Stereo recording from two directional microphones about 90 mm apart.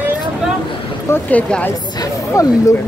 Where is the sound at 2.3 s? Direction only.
35° left (ahead or behind).